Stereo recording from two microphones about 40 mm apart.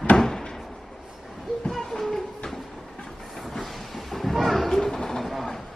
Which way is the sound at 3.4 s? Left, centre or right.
Centre.